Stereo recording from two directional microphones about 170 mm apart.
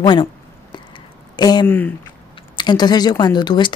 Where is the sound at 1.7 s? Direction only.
10° left (ahead or behind).